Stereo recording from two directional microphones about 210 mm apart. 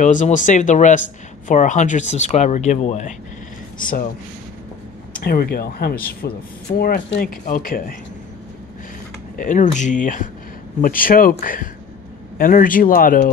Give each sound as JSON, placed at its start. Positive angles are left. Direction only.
{"t": 0.0, "sound": "speech", "side_deg": 35}
{"t": 5.1, "sound": "speech", "side_deg": 45}
{"t": 9.4, "sound": "speech", "side_deg": 35}